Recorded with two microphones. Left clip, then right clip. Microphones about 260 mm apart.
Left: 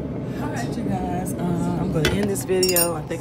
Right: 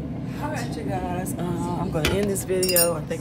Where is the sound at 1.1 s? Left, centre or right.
Right.